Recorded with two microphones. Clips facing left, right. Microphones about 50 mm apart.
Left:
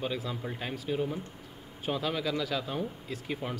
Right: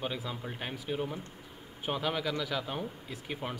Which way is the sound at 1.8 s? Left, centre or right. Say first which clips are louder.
Left 1 dB; right.